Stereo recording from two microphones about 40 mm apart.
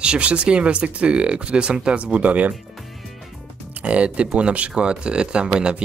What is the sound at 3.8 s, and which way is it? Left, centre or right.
Speech, right.